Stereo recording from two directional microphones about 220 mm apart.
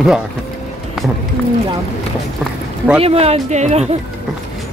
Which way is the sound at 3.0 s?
30° right (ahead or behind).